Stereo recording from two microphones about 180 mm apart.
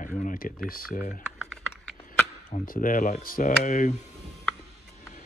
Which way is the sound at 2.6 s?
50° left (ahead or behind).